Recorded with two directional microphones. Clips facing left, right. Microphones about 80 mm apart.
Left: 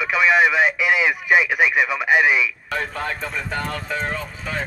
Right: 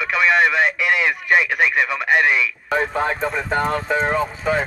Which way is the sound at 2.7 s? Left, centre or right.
Right.